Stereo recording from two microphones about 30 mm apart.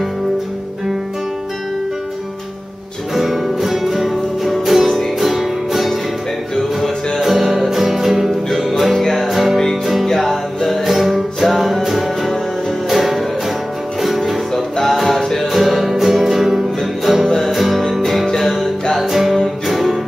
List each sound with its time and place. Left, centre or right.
3.2 s music: centre
7.2 s music: centre
10.9 s music: centre
14.5 s music: centre
15.4 s music: centre